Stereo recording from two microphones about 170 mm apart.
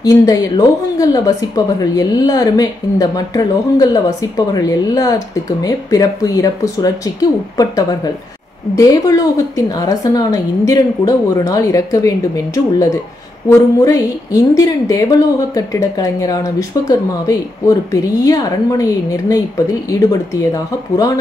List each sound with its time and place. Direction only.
0.0 s a woman's voice: 20° left (ahead or behind)
13.7 s a woman's voice: 20° left (ahead or behind)